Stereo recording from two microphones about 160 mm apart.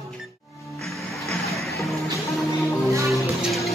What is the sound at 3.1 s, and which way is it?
Music, centre (ahead or behind).